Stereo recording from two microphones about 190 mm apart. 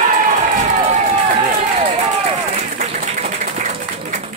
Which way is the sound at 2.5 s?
35° right (ahead or behind).